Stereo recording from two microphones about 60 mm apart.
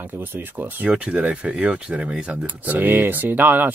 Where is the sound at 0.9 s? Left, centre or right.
Centre.